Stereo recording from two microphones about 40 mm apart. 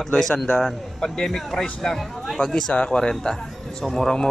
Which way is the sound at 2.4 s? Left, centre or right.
Centre.